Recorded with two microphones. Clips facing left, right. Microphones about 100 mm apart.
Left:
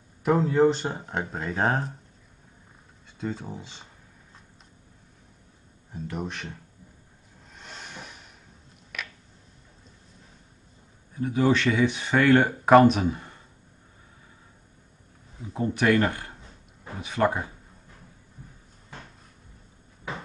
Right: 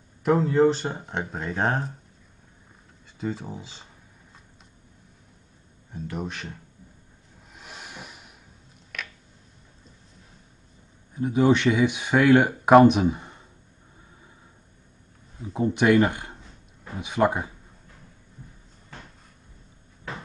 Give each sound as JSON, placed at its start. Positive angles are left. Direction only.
{"t": 0.2, "sound": "speech", "side_deg": 0}
{"t": 3.2, "sound": "speech", "side_deg": 0}
{"t": 5.9, "sound": "speech", "side_deg": 0}
{"t": 7.5, "sound": "a sound", "side_deg": -5}
{"t": 8.9, "sound": "a sound", "side_deg": 5}
{"t": 11.1, "sound": "speech", "side_deg": -20}
{"t": 15.5, "sound": "speech", "side_deg": -15}